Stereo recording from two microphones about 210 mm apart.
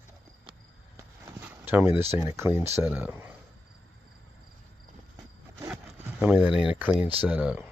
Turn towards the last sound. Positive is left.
turn(degrees=-5)  # may be behind; listen again after turning